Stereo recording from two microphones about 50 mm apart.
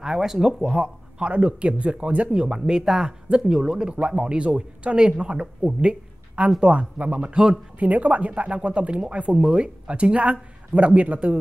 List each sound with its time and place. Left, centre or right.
0.0 s speech: centre
1.2 s speech: right
7.8 s speech: right